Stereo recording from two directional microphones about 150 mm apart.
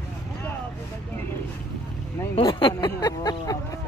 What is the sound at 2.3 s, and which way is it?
Speech, 30° left (ahead or behind).